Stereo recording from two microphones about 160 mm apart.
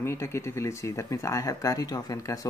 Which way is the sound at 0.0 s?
15° left (ahead or behind).